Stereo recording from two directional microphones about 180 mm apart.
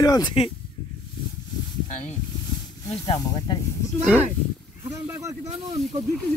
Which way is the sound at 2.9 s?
25° left (ahead or behind).